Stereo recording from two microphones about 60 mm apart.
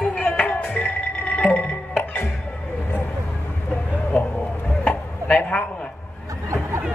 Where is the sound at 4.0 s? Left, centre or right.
Left.